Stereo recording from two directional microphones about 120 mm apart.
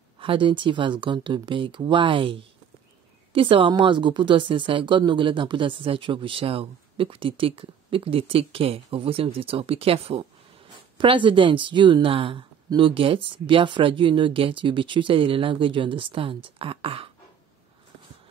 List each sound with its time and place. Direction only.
0.2 s speech: 45° right (ahead or behind)